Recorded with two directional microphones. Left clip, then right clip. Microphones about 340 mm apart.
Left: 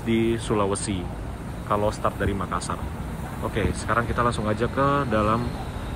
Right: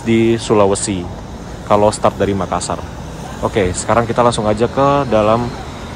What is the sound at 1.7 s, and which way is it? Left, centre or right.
Speech, right.